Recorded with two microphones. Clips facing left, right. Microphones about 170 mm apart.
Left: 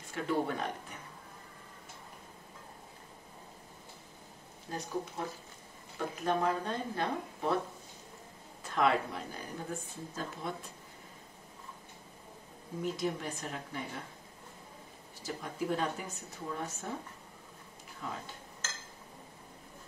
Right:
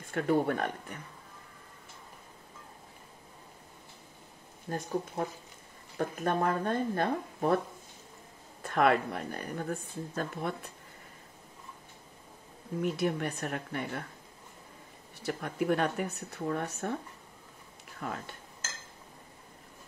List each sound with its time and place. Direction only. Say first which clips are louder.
0.1 s speech: right 5 dB; 55° right (ahead or behind)
4.6 s speech: right 4 dB; 50° right (ahead or behind)
8.6 s speech: right 3 dB; 60° right (ahead or behind)
12.8 s speech: right 4 dB; 65° right (ahead or behind)
15.2 s speech: right 5 dB; 65° right (ahead or behind)
18.0 s speech: right 4 dB; 60° right (ahead or behind)